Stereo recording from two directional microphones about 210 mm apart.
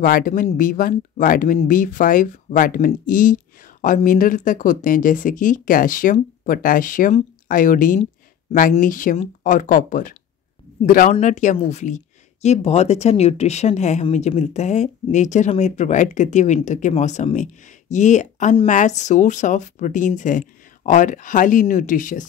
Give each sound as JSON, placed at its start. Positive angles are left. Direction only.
{"t": 0.0, "sound": "speech", "side_deg": 40}